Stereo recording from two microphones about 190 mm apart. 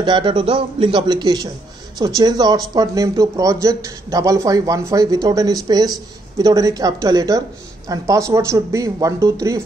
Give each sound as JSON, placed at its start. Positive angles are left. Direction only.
{"t": 0.0, "sound": "speech", "side_deg": -25}